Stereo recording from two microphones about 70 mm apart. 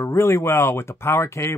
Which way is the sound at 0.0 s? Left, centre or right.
Left.